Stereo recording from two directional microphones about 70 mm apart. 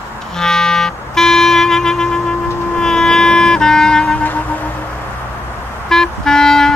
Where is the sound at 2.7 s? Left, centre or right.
Centre.